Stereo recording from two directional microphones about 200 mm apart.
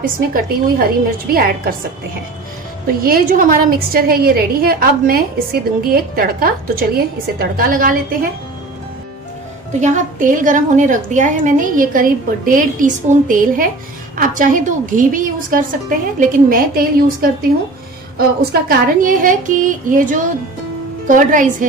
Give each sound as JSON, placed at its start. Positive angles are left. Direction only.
{"t": 0.3, "sound": "a woman's voice", "side_deg": -45}
{"t": 3.0, "sound": "a woman's voice", "side_deg": -45}
{"t": 9.8, "sound": "a woman's voice", "side_deg": -40}